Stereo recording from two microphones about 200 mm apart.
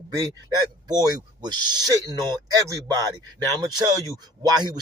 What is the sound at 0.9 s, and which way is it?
Speech, 20° right (ahead or behind).